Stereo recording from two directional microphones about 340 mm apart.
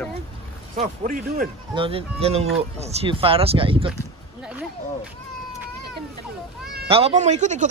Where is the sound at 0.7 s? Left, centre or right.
Right.